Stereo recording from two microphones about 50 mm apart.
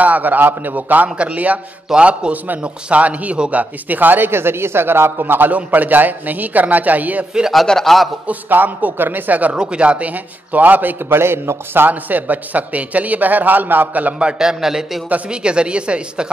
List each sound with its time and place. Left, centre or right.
0.0 s a man's voice: right
2.3 s a man's voice: right
4.3 s speech: right
5.2 s a man's voice: right
7.6 s a man's voice: centre
8.3 s a man's voice: right
9.6 s a man's voice: right
11.1 s a man's voice: right
14.1 s a man's voice: centre
15.2 s a woman's voice: centre